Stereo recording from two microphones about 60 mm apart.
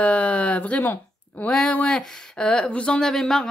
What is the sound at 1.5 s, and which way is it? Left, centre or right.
Speech, centre.